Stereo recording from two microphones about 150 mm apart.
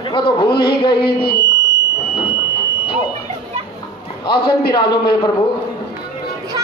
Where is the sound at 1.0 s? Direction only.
90° left.